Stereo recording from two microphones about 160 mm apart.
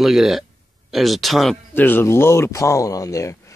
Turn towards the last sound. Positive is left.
turn(degrees=20)  # may be behind; listen again after turning